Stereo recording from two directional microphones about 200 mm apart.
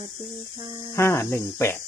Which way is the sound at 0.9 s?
15° left (ahead or behind).